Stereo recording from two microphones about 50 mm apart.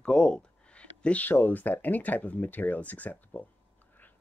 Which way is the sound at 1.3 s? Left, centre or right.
Left.